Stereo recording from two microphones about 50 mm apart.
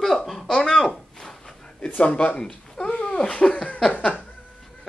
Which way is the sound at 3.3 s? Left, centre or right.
Left.